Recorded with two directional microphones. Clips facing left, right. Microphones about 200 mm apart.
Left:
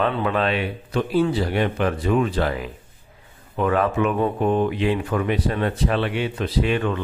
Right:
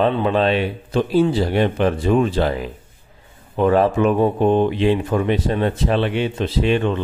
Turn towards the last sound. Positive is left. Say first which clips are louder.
# right 3 dB
turn(degrees=-25)  # may be behind; listen again after turning